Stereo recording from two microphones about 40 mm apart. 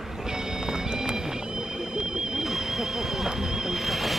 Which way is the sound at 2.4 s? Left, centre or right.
Centre.